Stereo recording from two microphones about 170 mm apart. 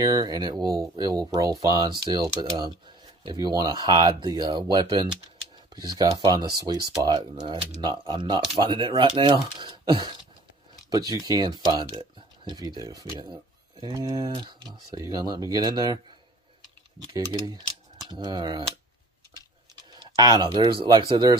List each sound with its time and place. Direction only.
0.0 s speech: 20° right (ahead or behind)
17.0 s speech: 25° right (ahead or behind)
20.2 s speech: 25° right (ahead or behind)